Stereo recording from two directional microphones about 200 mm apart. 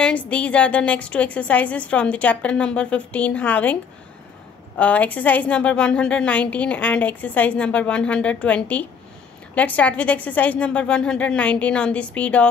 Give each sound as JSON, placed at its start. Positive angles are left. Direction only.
{"t": 0.0, "sound": "a woman's voice", "side_deg": 5}
{"t": 4.7, "sound": "a woman's voice", "side_deg": 5}